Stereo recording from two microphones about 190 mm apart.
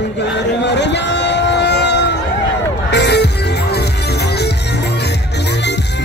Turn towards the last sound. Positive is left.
turn(degrees=65)  # may be behind; listen again after turning